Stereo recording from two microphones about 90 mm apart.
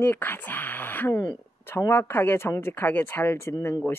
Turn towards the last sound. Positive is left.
turn(degrees=25)  # may be behind; listen again after turning